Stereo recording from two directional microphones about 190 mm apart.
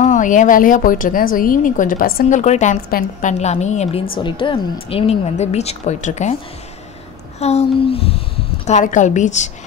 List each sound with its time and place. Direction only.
0.0 s a woman's voice: 40° left (ahead or behind)
7.3 s a woman's voice: 35° left (ahead or behind)